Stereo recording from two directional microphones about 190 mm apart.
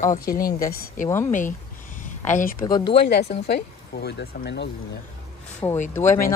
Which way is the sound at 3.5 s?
60° left (ahead or behind).